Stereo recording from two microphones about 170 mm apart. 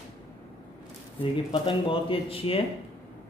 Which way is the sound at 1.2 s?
30° left (ahead or behind).